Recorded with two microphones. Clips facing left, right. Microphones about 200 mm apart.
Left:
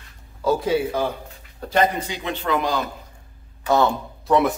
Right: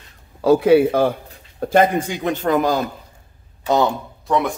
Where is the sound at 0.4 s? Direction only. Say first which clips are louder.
Right 8 dB; 65° right (ahead or behind); by 2.8 s 45° right (ahead or behind).